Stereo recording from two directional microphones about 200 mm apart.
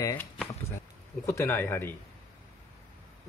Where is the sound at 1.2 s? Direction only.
15° left (ahead or behind).